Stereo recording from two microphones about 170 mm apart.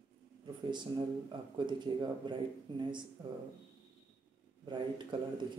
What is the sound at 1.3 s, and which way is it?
Speech, 25° right (ahead or behind).